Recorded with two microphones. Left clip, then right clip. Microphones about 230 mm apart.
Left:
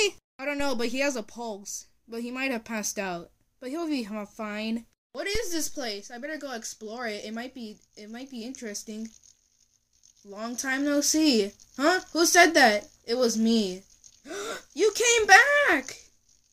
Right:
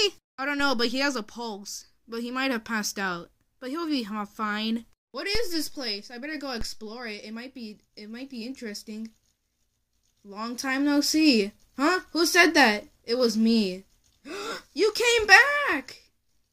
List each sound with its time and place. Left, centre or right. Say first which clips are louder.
0.0 s speech: right 1 dB; centre
10.3 s speech: right 1 dB; right